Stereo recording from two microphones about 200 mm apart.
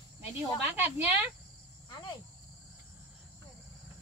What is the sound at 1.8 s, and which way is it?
Insect, 20° left (ahead or behind).